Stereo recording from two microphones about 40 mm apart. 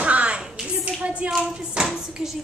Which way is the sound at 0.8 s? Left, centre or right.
Right.